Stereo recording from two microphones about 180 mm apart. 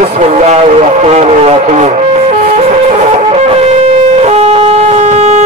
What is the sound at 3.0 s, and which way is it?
Shofar, 35° right (ahead or behind).